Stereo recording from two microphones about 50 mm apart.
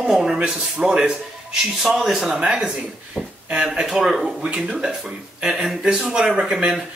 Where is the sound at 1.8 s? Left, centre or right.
Centre.